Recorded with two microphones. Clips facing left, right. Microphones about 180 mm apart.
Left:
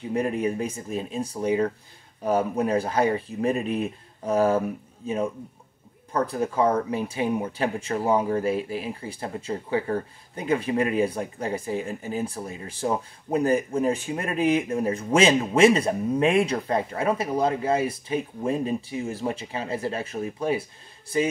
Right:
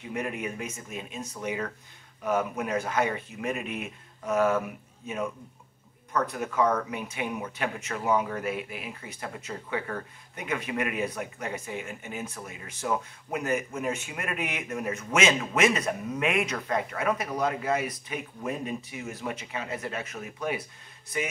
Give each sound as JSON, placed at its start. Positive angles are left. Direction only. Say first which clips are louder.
{"t": 0.0, "sound": "speech", "louder": "left 8 dB", "side_deg": 35}